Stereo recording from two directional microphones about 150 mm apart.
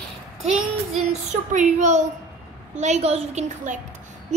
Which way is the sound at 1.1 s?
55° right (ahead or behind).